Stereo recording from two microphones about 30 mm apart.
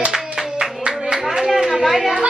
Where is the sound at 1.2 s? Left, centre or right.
Centre.